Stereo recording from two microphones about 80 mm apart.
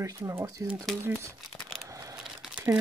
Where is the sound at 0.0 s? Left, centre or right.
Right.